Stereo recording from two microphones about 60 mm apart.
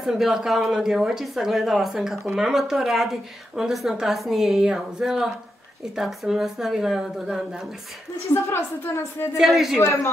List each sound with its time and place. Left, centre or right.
0.0 s a woman's voice: centre
8.8 s speech: left
9.4 s a woman's voice: centre